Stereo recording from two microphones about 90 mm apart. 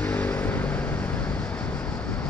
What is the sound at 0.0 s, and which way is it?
Vehicle, 20° left (ahead or behind).